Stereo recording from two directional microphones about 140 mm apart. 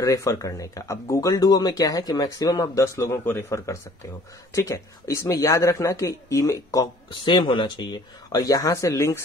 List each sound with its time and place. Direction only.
0.0 s speech: 20° left (ahead or behind)
7.1 s speech: 35° left (ahead or behind); by 9.2 s 20° left (ahead or behind)